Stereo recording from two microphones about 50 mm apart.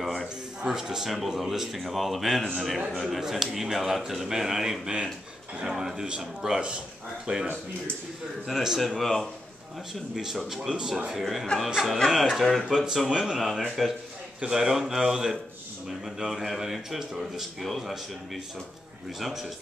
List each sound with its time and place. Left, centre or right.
0.0 s a sound: centre
0.6 s speech: centre
7.3 s speech: right
8.5 s speech: centre
13.4 s speech: centre